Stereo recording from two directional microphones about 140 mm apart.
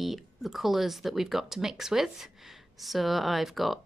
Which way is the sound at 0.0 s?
Centre (ahead or behind).